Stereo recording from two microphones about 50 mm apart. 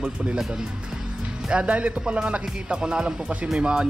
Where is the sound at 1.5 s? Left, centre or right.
Right.